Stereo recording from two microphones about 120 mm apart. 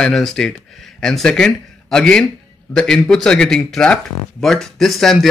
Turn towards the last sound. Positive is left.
turn(degrees=0)  # may be behind; listen again after turning